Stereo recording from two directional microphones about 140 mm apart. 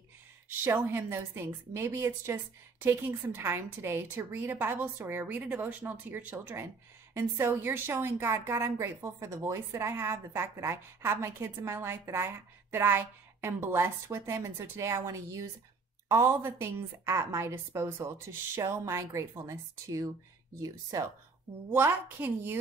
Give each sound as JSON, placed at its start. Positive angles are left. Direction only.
{"t": 0.5, "sound": "a woman's voice", "side_deg": -15}